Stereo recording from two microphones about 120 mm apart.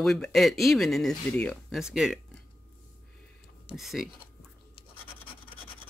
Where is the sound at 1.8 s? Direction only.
5° right (ahead or behind).